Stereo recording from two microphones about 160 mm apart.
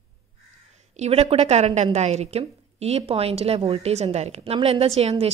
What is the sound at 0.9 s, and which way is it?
A woman's voice, 40° right (ahead or behind).